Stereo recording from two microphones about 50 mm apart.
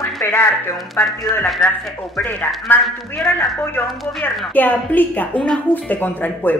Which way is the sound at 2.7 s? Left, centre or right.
Left.